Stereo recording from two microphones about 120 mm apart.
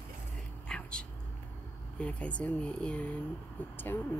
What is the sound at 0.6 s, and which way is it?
Whispering, 10° left (ahead or behind).